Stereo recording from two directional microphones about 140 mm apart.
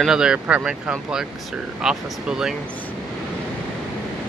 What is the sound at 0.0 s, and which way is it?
Speech, 5° right (ahead or behind).